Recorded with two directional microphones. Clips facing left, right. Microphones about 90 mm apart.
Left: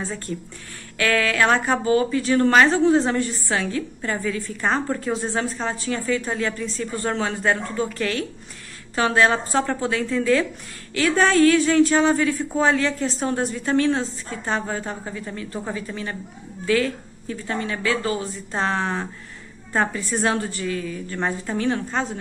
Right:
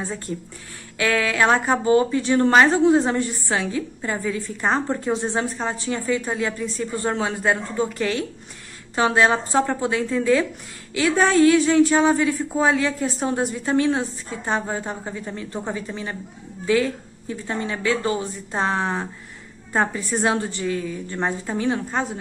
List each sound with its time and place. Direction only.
0.9 s a woman's voice: 20° right (ahead or behind)